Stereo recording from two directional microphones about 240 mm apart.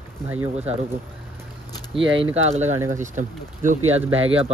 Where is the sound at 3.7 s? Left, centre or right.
Right.